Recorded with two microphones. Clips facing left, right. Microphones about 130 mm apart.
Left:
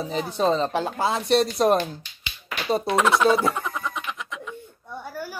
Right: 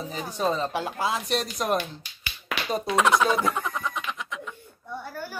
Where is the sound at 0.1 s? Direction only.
30° left (ahead or behind).